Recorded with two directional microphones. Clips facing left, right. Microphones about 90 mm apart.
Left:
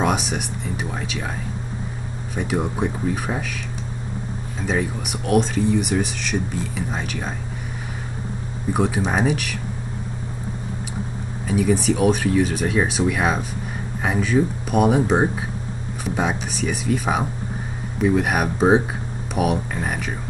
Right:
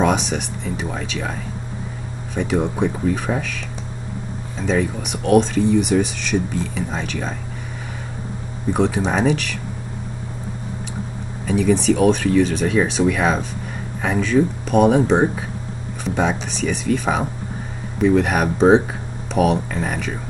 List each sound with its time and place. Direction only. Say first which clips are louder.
0.0 s speech: right 3 dB; 5° left (ahead or behind)
2.3 s speech: right 3 dB; 5° left (ahead or behind)
4.6 s speech: right 3 dB; 5° left (ahead or behind)
8.7 s speech: right 2 dB; 5° left (ahead or behind)
11.4 s speech: right 3 dB; 5° left (ahead or behind)